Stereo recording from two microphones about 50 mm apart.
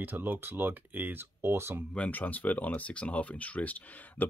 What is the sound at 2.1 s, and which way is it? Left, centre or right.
Speech, left.